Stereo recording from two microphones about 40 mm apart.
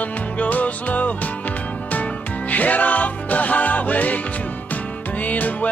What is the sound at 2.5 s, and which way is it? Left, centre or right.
Music, left.